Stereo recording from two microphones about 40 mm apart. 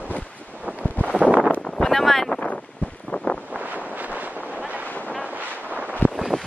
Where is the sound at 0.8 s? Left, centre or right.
Left.